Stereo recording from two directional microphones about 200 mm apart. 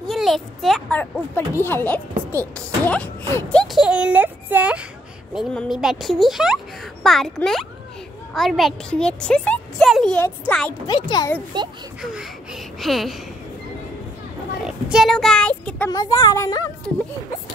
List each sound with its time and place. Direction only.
0.0 s a child's voice: centre (ahead or behind)
10.9 s speech: 20° left (ahead or behind)
11.5 s speech: 25° right (ahead or behind)
12.0 s speech: centre (ahead or behind)
14.9 s a child's voice: centre (ahead or behind)
15.9 s a woman's voice: 20° left (ahead or behind)